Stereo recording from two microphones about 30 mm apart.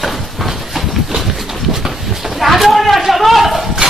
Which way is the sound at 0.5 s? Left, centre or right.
Centre.